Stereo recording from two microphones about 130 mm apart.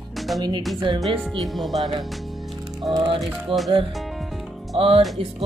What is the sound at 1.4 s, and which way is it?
Speech, centre (ahead or behind).